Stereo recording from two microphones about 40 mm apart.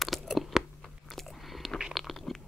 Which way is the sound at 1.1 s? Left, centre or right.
Centre.